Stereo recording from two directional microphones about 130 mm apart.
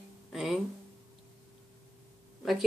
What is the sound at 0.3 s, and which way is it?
Music, centre (ahead or behind).